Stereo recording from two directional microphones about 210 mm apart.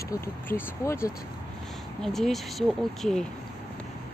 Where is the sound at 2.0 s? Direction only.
Centre (ahead or behind).